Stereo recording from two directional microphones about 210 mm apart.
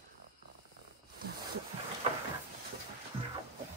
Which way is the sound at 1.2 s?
45° right (ahead or behind).